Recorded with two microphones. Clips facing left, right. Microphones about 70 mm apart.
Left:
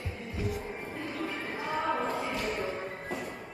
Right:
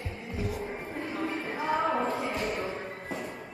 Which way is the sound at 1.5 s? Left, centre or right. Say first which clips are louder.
Right 4 dB; centre.